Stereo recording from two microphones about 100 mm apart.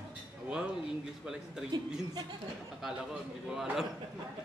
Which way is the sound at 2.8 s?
5° right (ahead or behind).